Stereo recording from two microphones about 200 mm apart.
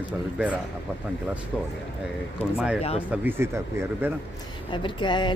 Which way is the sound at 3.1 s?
10° right (ahead or behind).